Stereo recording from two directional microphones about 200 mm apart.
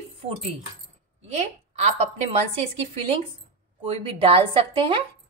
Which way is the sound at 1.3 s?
35° right (ahead or behind).